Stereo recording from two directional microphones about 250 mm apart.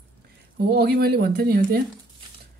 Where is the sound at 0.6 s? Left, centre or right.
Right.